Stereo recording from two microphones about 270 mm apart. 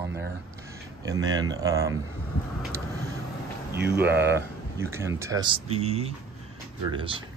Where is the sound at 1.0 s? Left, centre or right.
Centre.